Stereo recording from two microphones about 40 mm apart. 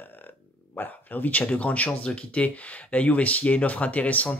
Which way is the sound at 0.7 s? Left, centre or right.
Left.